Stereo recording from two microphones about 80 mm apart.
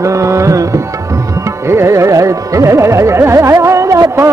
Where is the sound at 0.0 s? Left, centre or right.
Right.